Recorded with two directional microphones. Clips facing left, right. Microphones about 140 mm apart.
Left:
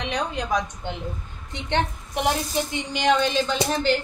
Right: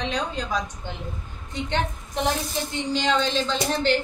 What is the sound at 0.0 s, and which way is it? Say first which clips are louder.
A woman's voice: left 1 dB; 15° left (ahead or behind).